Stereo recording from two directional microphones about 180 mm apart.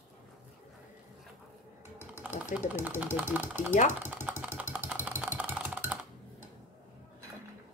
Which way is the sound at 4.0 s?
10° right (ahead or behind).